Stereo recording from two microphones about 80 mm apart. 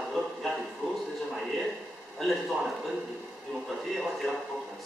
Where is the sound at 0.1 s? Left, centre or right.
Centre.